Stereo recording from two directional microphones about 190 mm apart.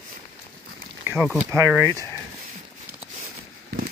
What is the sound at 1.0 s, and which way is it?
Speech, 10° right (ahead or behind).